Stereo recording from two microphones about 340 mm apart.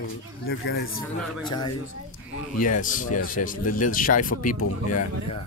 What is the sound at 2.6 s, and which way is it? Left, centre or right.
Speech, left.